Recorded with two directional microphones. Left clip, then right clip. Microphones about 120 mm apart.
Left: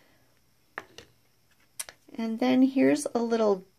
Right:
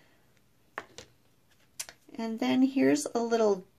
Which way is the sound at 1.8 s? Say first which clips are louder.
Left 2 dB; 40° left (ahead or behind).